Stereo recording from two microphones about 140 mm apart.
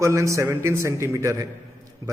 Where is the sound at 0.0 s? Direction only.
20° right (ahead or behind).